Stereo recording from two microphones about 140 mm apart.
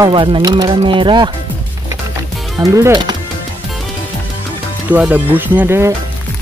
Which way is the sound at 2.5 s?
25° right (ahead or behind).